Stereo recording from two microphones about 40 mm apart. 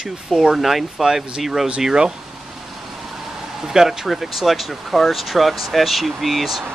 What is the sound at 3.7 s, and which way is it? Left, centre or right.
Speech, centre.